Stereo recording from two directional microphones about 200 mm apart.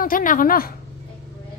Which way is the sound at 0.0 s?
45° left (ahead or behind).